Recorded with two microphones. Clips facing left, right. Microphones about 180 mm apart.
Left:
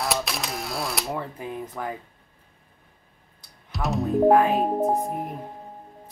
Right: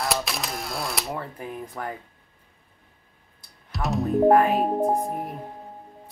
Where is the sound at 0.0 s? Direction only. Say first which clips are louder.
Even; centre (ahead or behind).